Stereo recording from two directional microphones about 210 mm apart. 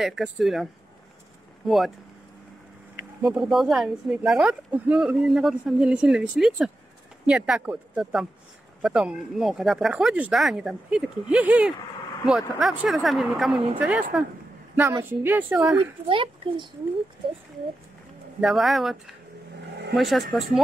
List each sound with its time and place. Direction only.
0.0 s speech: centre (ahead or behind)
3.0 s speech: 5° right (ahead or behind)
16.1 s speech: 25° right (ahead or behind)
18.4 s speech: centre (ahead or behind)